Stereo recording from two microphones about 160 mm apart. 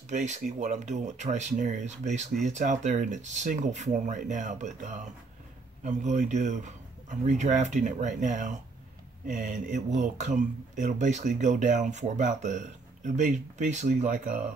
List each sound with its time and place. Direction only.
0.1 s speech: 50° right (ahead or behind)